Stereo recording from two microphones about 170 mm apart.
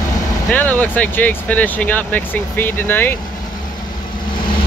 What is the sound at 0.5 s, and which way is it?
Speech, 10° left (ahead or behind).